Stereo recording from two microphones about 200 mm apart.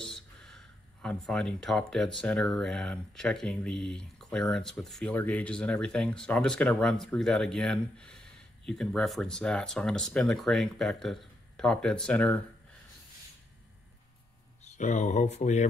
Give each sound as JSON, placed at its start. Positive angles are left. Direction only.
{"t": 0.0, "sound": "speech", "side_deg": 5}
{"t": 14.6, "sound": "speech", "side_deg": 35}